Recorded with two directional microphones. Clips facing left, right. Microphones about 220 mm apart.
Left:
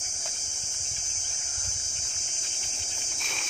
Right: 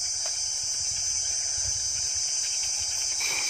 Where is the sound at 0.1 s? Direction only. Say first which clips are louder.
Even; 35° left (ahead or behind).